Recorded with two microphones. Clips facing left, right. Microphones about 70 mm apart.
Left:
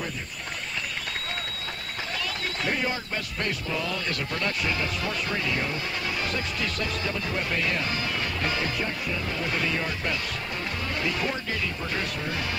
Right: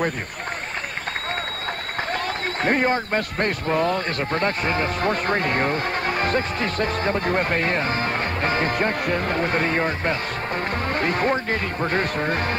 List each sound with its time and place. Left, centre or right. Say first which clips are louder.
2.1 s a man's voice: right 3 dB; right